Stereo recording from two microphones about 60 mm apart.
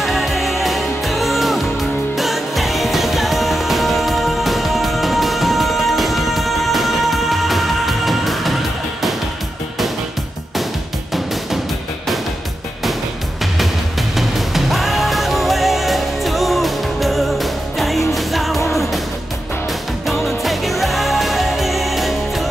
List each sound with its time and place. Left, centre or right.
0.0 s music: centre
14.1 s music: centre
20.1 s music: centre